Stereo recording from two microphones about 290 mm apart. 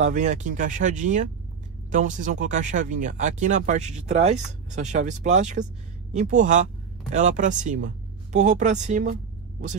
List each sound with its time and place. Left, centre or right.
0.0 s speech: right